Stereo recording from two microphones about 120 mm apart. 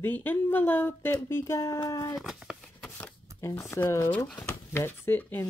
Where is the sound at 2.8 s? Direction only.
10° left (ahead or behind).